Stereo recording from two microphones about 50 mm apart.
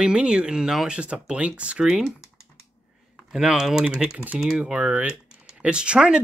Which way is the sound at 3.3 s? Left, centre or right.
Centre.